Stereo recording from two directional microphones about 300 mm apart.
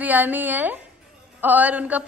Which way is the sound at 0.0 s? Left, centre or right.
Centre.